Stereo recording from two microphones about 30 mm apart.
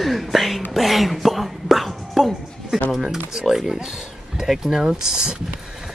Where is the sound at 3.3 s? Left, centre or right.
Centre.